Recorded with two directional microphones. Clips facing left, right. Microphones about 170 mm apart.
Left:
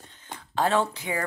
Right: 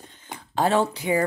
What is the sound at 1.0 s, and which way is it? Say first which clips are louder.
Speech: right 8 dB; 20° right (ahead or behind).